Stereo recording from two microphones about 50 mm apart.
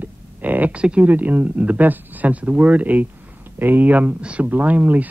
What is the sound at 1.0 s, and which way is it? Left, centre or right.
Speech, right.